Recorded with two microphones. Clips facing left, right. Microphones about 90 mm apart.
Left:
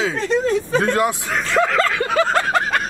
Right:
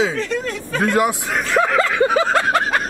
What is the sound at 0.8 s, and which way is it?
Speech, 5° right (ahead or behind).